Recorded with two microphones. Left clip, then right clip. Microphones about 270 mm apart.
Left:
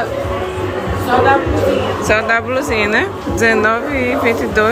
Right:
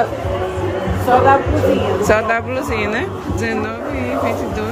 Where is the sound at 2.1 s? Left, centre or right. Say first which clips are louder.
Left 3 dB; centre.